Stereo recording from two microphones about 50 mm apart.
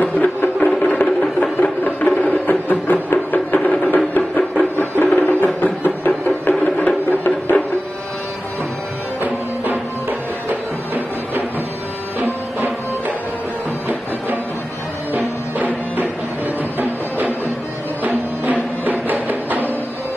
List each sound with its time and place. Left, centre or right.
0.0 s music: left
12.2 s music: right
15.1 s music: right
18.0 s music: right